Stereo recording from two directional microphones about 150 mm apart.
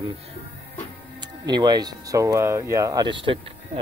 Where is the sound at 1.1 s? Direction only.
30° right (ahead or behind).